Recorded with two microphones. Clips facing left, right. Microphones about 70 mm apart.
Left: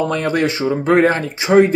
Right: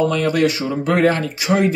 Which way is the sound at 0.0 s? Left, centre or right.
Left.